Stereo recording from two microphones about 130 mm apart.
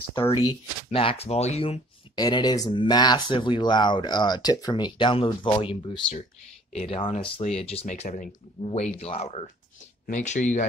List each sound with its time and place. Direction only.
0.8 s speech: 50° left (ahead or behind)
2.1 s speech: 30° left (ahead or behind); by 7.8 s 50° left (ahead or behind)
7.8 s speech: 65° left (ahead or behind)
10.0 s speech: 65° left (ahead or behind)